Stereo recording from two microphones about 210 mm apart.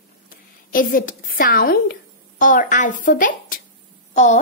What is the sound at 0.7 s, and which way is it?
A child's voice, 40° left (ahead or behind).